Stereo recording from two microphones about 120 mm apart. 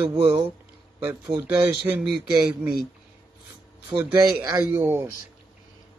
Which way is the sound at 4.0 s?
15° right (ahead or behind).